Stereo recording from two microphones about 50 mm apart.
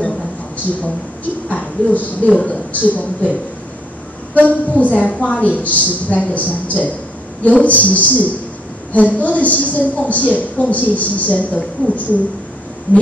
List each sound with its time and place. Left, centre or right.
1.5 s a woman's voice: left